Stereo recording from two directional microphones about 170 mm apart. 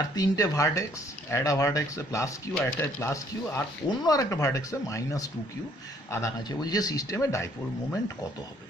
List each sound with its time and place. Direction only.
0.0 s speech: 20° left (ahead or behind)